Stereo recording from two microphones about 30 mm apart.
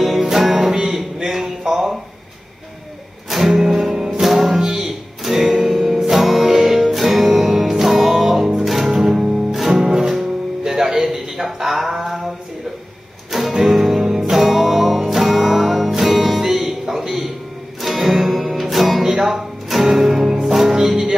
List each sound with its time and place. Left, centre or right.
0.0 s music: centre
3.4 s music: centre
13.5 s music: centre
14.3 s music: centre
19.1 s music: centre